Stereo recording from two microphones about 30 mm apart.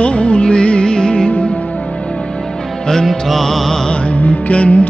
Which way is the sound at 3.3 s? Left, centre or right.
Centre.